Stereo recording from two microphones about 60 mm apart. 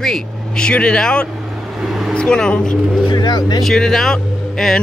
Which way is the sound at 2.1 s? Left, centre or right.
Centre.